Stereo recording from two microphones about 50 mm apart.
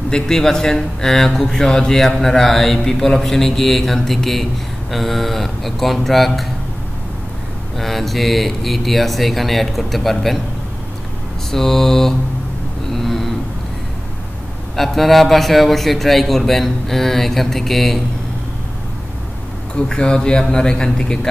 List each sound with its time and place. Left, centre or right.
0.1 s a man's voice: centre
7.7 s a man's voice: centre
11.5 s a man's voice: centre
12.9 s a sound: centre
14.8 s a man's voice: centre
19.9 s a man's voice: centre